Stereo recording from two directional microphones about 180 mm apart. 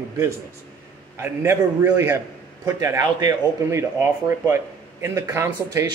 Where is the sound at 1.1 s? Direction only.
15° right (ahead or behind).